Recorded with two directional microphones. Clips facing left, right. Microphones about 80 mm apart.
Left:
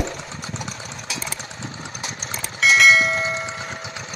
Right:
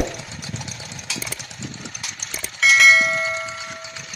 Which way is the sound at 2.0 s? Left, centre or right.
Left.